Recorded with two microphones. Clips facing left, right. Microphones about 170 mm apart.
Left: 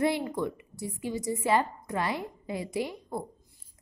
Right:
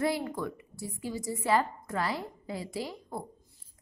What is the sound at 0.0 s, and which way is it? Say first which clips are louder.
A woman's voice: left 3 dB; 20° left (ahead or behind).